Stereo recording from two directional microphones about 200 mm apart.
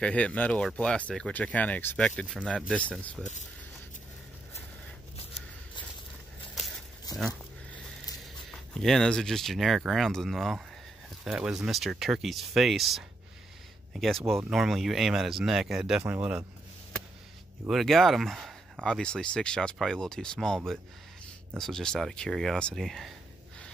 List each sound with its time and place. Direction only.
0.0 s speech: 5° left (ahead or behind)
7.1 s a sound: 20° left (ahead or behind)
8.7 s speech: centre (ahead or behind)
17.6 s speech: centre (ahead or behind)